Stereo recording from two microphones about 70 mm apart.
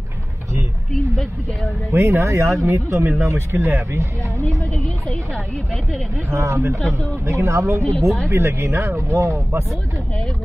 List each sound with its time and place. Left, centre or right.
1.9 s speech: right
6.3 s speech: right
6.8 s speech: centre
7.2 s speech: right